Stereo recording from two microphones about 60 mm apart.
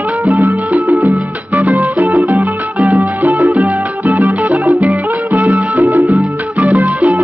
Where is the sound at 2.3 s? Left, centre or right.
Right.